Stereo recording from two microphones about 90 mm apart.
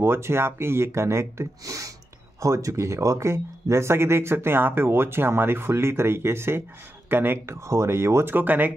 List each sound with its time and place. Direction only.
0.0 s speech: 25° right (ahead or behind)